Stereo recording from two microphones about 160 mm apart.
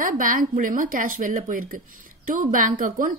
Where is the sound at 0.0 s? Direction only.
60° right (ahead or behind).